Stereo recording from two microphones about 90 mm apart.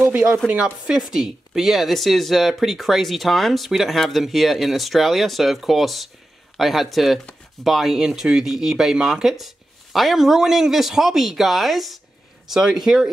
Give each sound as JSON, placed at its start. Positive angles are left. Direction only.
{"t": 0.0, "sound": "speech", "side_deg": -15}